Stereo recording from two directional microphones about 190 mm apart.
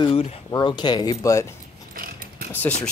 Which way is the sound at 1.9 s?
50° right (ahead or behind).